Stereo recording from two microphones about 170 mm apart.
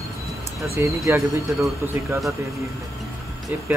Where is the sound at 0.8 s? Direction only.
15° right (ahead or behind).